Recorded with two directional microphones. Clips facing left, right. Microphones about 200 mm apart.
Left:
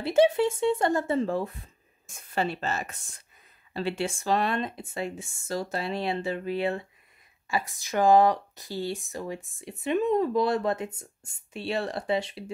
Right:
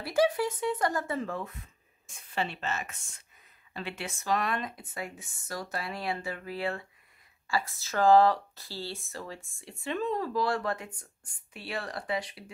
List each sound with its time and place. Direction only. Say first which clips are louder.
0.0 s speech: left 5 dB; 25° left (ahead or behind)